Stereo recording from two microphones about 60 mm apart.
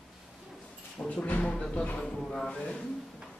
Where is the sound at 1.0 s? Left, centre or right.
Centre.